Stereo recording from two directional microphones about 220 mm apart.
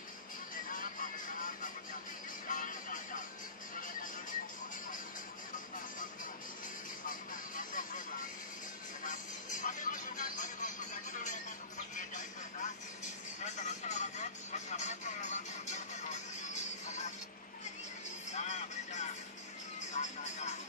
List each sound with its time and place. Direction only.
0.7 s vehicle: 40° left (ahead or behind)
2.4 s music: 35° left (ahead or behind)
7.1 s a sound: 35° left (ahead or behind)
9.0 s music: 35° left (ahead or behind)
13.0 s vehicle: 35° left (ahead or behind)
18.3 s music: 30° left (ahead or behind)
19.9 s vehicle: 30° left (ahead or behind)